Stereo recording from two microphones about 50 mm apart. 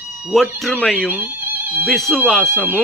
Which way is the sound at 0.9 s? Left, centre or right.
Right.